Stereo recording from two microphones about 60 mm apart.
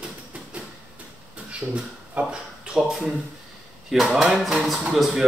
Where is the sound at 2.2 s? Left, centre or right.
Right.